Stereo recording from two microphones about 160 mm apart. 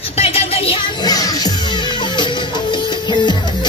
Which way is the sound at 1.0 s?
25° left (ahead or behind).